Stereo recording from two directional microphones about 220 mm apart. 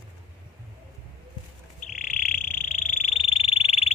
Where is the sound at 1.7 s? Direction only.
35° left (ahead or behind).